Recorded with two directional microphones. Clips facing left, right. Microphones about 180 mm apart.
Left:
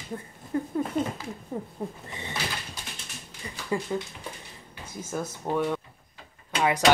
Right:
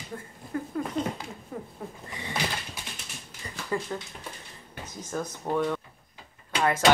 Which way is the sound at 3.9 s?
10° left (ahead or behind).